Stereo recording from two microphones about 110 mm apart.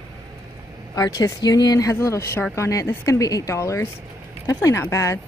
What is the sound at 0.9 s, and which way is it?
Speech, 35° left (ahead or behind).